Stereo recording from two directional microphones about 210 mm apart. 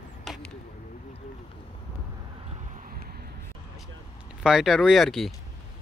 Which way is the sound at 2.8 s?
45° right (ahead or behind).